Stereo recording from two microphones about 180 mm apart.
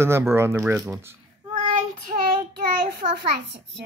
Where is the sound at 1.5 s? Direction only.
45° right (ahead or behind).